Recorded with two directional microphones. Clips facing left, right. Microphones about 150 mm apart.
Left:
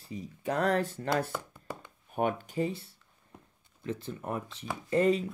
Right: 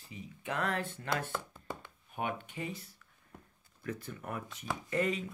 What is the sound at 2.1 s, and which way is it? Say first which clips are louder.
Speech: left 7 dB; 45° left (ahead or behind).